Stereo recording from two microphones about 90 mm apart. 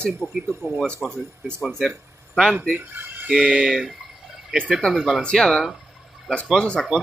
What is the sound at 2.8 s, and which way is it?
Speech, 20° right (ahead or behind).